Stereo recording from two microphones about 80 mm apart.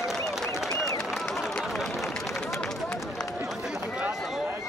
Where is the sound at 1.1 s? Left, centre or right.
Centre.